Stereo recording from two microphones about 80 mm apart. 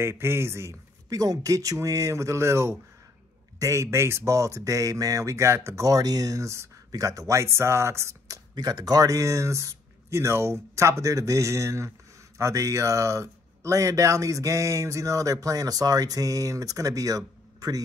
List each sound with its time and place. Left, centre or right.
0.0 s speech: right
1.1 s speech: right
8.5 s speech: right